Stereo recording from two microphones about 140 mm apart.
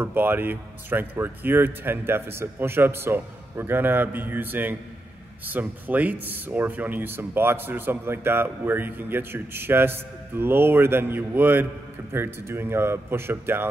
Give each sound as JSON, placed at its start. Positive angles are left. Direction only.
{"t": 0.0, "sound": "speech", "side_deg": -15}